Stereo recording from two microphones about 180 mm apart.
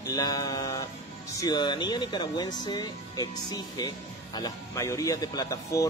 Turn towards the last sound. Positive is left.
turn(degrees=20)  # may be behind; listen again after turning